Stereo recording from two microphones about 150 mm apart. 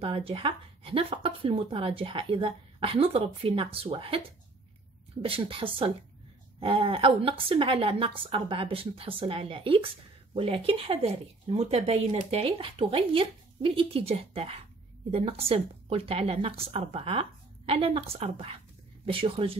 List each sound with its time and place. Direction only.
0.0 s speech: 40° right (ahead or behind)